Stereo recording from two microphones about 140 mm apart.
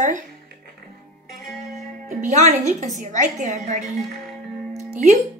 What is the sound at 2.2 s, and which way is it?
A woman's voice, 60° right (ahead or behind).